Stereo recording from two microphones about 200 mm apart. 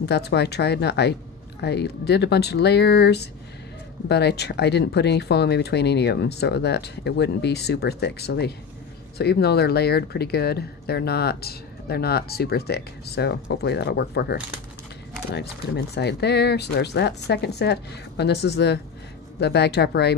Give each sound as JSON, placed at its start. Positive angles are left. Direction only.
{"t": 0.0, "sound": "speech", "side_deg": 55}